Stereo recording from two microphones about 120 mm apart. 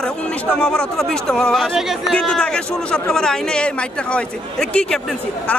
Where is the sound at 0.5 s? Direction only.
5° left (ahead or behind).